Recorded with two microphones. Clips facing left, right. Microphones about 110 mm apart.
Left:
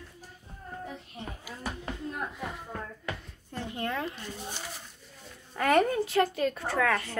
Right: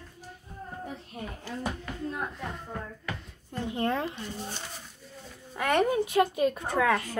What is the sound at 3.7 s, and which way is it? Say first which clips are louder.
Speech: right 4 dB; 30° right (ahead or behind).